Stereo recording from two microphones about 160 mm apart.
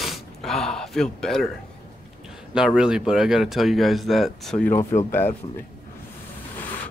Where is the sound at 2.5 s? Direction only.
5° right (ahead or behind).